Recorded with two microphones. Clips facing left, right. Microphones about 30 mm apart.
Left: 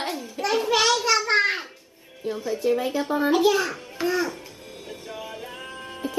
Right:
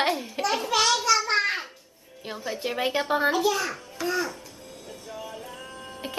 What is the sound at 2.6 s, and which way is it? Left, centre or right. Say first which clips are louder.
Speech: left 3 dB; right.